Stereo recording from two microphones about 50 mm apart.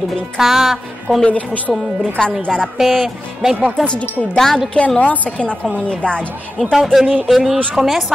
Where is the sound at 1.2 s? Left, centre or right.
Left.